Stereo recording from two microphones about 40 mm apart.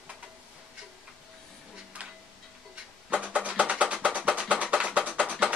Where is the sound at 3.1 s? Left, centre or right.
Right.